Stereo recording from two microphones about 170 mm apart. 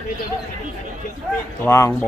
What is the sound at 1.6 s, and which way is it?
Speech, 15° left (ahead or behind).